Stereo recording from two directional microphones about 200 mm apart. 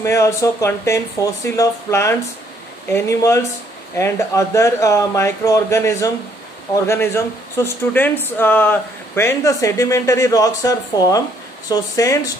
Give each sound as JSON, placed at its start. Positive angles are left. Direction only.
{"t": 0.0, "sound": "speech", "side_deg": 15}